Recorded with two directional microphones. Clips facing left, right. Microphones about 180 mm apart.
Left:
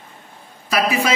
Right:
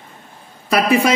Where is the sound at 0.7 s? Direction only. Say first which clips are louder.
Right 4 dB; 60° right (ahead or behind).